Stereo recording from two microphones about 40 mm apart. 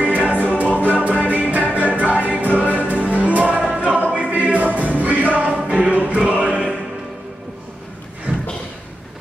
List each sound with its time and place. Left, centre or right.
0.0 s music: right
3.7 s choir: right
4.1 s music: right
5.7 s choir: right
6.1 s music: right
8.3 s a sound: right